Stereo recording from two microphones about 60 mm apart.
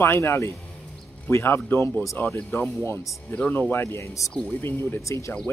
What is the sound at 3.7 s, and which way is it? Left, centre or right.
Speech, left.